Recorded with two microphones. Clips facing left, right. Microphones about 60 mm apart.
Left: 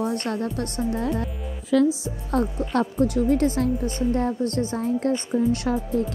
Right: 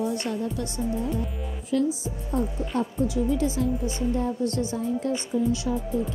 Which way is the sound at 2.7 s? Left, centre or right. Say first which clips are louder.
Left 4 dB; left.